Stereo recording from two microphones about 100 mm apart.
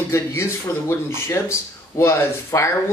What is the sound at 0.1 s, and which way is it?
Speech, 25° left (ahead or behind).